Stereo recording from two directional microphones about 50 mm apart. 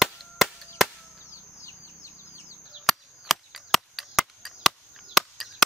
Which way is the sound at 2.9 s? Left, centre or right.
Centre.